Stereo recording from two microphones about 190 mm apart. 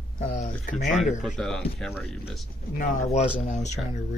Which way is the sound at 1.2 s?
Centre (ahead or behind).